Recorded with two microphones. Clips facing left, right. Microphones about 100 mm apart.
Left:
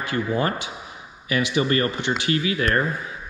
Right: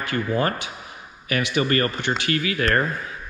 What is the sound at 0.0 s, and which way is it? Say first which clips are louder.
A man's voice: even; 20° left (ahead or behind).